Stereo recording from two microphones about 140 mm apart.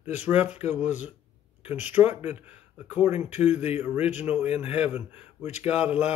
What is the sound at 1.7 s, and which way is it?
Speech, 10° right (ahead or behind).